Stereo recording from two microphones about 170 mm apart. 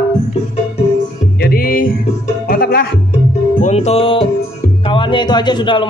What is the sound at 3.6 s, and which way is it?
Music, 40° left (ahead or behind).